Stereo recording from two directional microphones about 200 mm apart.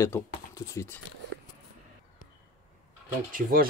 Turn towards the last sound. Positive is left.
turn(degrees=-50)  # may be behind; listen again after turning